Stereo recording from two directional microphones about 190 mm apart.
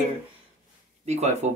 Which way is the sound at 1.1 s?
35° right (ahead or behind).